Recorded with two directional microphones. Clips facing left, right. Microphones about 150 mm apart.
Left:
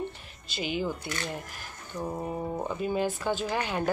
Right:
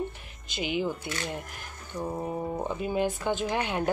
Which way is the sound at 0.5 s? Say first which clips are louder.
Right 1 dB; 15° right (ahead or behind).